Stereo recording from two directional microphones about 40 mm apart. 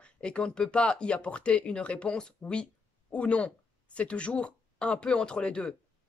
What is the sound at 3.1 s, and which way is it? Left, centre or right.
Speech, left.